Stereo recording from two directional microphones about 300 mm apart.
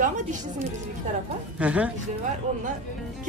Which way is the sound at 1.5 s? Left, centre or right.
Centre.